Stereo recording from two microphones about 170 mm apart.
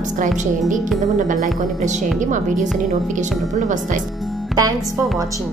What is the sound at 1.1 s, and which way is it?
Speech, 50° right (ahead or behind).